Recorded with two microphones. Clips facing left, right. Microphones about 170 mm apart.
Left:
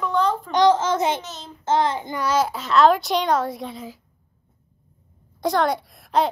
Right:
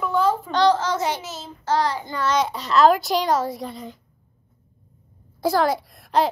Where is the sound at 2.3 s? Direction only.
5° left (ahead or behind).